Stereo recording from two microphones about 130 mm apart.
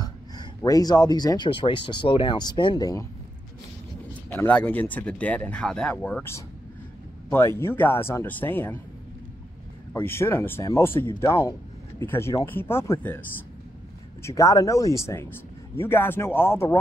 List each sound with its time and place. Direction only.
0.6 s speech: 30° left (ahead or behind)
4.3 s speech: 10° left (ahead or behind)
9.9 s speech: 20° left (ahead or behind)
14.2 s speech: 25° left (ahead or behind)